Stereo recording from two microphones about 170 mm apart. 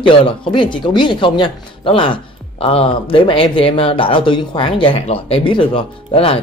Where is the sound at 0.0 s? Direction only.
30° left (ahead or behind).